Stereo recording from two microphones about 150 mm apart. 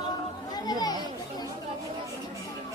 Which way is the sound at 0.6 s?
25° left (ahead or behind).